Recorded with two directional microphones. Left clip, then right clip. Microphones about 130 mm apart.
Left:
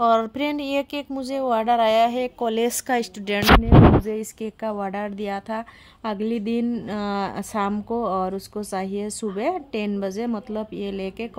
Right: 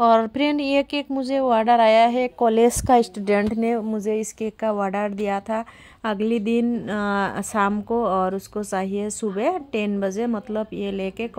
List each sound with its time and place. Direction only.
0.0 s speech: 35° right (ahead or behind)
4.4 s a woman's voice: 20° right (ahead or behind)